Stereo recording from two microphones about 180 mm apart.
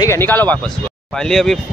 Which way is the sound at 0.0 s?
15° left (ahead or behind).